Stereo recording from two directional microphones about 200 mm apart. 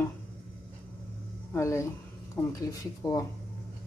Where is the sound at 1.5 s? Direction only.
15° left (ahead or behind).